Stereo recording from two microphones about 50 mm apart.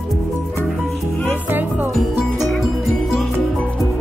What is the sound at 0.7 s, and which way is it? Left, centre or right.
Music, centre.